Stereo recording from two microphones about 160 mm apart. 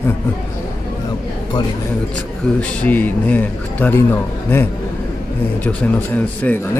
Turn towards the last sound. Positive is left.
turn(degrees=10)  # may be behind; listen again after turning